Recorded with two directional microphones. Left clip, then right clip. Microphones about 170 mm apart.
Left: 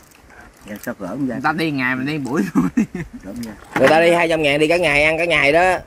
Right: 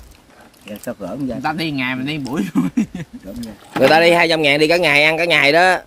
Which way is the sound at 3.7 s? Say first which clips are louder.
Right 1 dB; 10° right (ahead or behind).